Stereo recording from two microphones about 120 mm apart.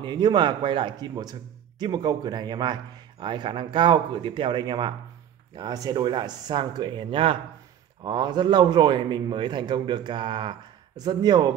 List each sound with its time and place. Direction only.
0.0 s a man's voice: 35° right (ahead or behind)